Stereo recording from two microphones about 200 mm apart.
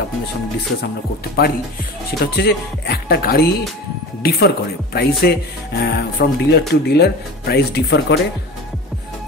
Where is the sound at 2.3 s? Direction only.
55° left (ahead or behind).